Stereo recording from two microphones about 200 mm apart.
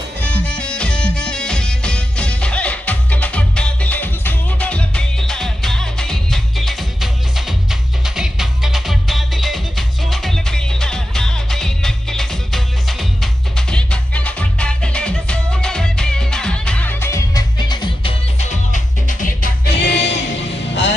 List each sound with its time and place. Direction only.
0.2 s music: 5° left (ahead or behind)
18.4 s music: 40° left (ahead or behind); by 20.2 s 60° left (ahead or behind)